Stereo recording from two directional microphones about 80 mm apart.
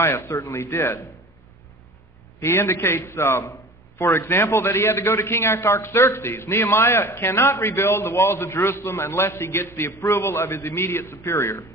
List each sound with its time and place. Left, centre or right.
0.0 s a man's voice: left
2.4 s a man's voice: left